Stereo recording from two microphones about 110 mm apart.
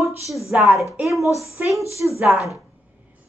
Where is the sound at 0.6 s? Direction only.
30° left (ahead or behind).